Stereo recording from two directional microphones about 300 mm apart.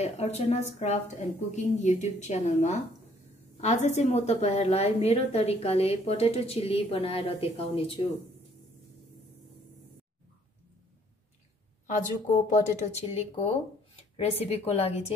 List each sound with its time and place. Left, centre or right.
0.0 s a woman's voice: left
12.4 s a woman's voice: left